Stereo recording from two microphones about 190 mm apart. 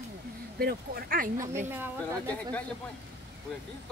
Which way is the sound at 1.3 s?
15° right (ahead or behind).